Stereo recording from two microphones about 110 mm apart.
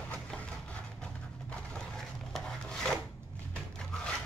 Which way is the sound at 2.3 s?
5° left (ahead or behind).